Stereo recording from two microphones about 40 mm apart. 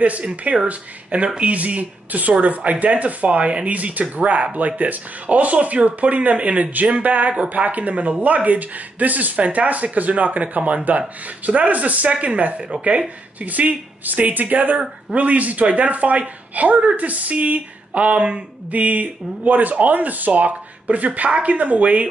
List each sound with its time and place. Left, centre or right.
0.3 s speech: right
8.5 s speech: right
18.7 s speech: right